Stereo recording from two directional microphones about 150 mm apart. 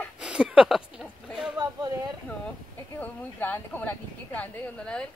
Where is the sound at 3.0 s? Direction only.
10° left (ahead or behind).